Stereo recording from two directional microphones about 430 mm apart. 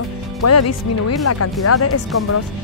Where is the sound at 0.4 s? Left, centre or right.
Left.